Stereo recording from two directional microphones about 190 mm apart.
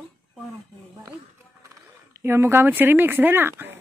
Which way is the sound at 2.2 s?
15° right (ahead or behind).